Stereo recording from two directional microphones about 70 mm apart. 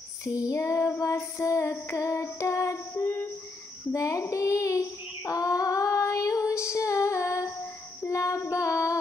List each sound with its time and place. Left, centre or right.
0.2 s music: left
3.9 s child singing: left
8.0 s female singing: left